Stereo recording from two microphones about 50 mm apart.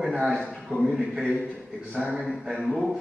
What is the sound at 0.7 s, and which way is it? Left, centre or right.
Speech, centre.